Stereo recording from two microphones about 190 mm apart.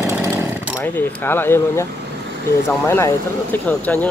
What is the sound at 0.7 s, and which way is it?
Speech, 10° left (ahead or behind).